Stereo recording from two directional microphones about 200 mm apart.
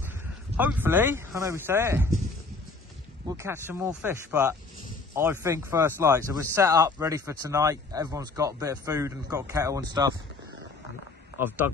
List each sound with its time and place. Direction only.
0.6 s speech: 10° right (ahead or behind)
3.3 s speech: 15° right (ahead or behind)
11.4 s speech: 10° right (ahead or behind)